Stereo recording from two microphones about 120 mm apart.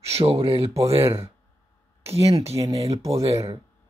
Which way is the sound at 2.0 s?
55° right (ahead or behind).